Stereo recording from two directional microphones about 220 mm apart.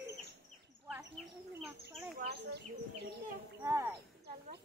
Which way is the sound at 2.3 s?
50° right (ahead or behind).